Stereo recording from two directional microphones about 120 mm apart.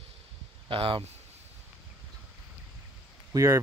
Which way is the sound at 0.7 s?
45° right (ahead or behind).